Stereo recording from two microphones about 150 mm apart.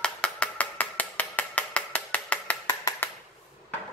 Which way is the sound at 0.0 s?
5° left (ahead or behind).